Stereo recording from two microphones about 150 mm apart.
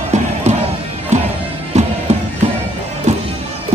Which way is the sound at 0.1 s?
50° right (ahead or behind).